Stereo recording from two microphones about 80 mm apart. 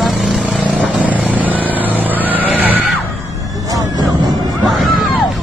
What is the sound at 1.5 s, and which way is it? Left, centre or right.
Vehicle, right.